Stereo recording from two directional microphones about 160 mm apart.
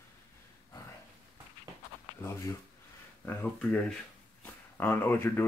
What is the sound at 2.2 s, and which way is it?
Speech, 15° left (ahead or behind).